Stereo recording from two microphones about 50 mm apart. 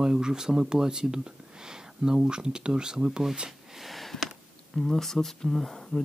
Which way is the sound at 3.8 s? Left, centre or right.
Centre.